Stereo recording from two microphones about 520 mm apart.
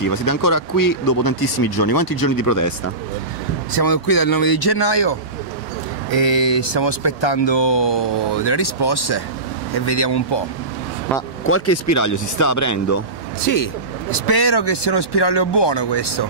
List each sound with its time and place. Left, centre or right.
0.0 s speech: left
11.4 s speech: left
14.2 s speech: left